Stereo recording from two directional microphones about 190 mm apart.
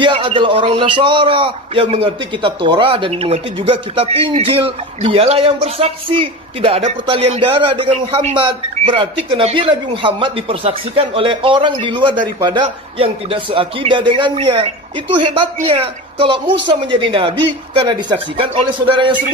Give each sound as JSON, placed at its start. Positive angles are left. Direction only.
{"t": 0.0, "sound": "a man's voice", "side_deg": -25}